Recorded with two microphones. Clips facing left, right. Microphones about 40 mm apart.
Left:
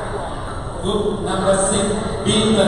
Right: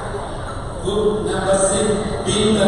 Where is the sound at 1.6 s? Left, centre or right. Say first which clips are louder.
Right 2 dB; centre.